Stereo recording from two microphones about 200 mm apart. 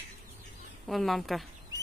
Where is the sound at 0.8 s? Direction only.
Centre (ahead or behind).